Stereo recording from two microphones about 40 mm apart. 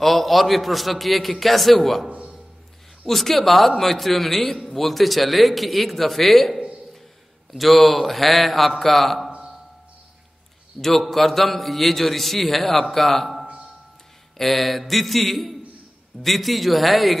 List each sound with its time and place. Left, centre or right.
0.0 s a man's voice: centre
2.0 s a man's voice: right
3.1 s a man's voice: centre
10.8 s a man's voice: centre